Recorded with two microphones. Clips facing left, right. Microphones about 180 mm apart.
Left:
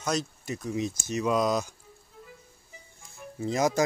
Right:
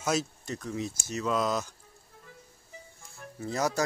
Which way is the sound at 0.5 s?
10° left (ahead or behind).